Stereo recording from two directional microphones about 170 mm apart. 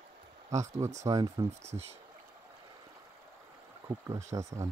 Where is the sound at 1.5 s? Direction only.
40° right (ahead or behind).